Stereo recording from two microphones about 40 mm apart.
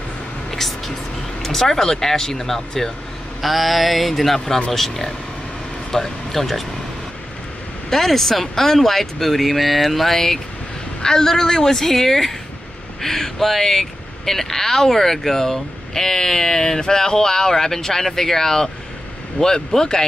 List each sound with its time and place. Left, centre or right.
0.5 s vehicle: centre
1.4 s speech: centre
7.9 s speech: centre